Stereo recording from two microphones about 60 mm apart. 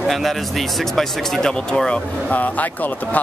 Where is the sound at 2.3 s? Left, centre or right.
Left.